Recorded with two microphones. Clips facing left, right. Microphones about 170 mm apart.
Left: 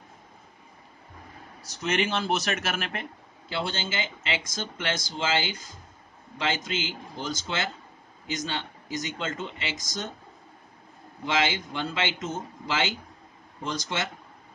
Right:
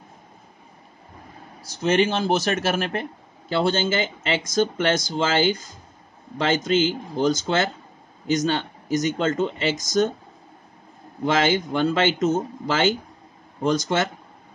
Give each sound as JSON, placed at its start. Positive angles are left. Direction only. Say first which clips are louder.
{"t": 1.8, "sound": "speech", "louder": "right 7 dB", "side_deg": -30}
{"t": 11.2, "sound": "speech", "louder": "right 7 dB", "side_deg": -45}